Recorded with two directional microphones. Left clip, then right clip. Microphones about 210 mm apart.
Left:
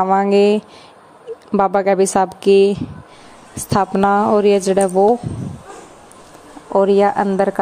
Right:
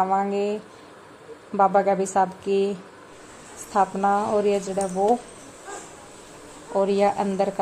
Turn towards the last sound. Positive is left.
turn(degrees=30)  # may be behind; listen again after turning